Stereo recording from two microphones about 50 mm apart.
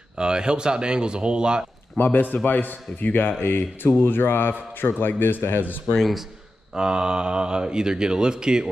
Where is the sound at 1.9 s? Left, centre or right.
Left.